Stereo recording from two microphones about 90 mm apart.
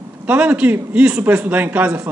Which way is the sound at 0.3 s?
15° right (ahead or behind).